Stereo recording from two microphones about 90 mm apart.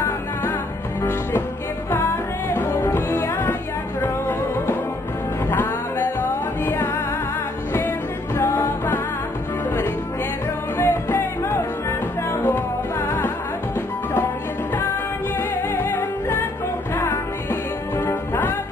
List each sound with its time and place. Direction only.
0.0 s music: 25° left (ahead or behind)
2.9 s music: 25° left (ahead or behind)
8.4 s music: 25° left (ahead or behind)
10.8 s music: 25° left (ahead or behind)
15.7 s music: 25° left (ahead or behind)